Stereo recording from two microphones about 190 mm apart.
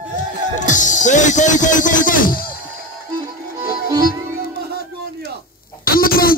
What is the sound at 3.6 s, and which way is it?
Music, 20° right (ahead or behind).